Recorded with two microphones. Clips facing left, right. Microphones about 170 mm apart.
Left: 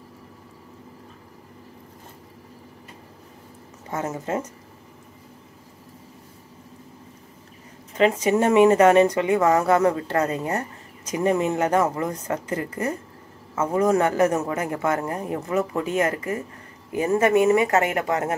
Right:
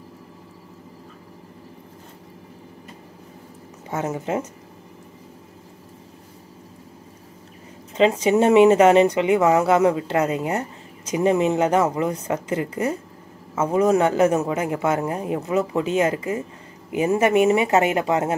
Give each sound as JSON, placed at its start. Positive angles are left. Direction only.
{"t": 3.9, "sound": "a woman's voice", "side_deg": -15}
{"t": 8.0, "sound": "a woman's voice", "side_deg": -25}